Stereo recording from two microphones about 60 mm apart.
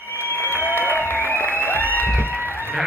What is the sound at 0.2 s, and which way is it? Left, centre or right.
Applause, left.